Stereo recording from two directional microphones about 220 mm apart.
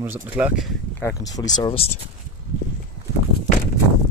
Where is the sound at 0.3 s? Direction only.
5° right (ahead or behind).